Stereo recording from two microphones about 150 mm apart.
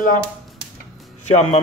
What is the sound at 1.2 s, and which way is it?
Speech, 50° left (ahead or behind).